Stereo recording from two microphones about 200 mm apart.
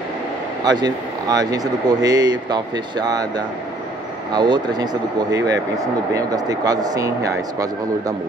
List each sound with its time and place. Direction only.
0.7 s speech: 20° right (ahead or behind)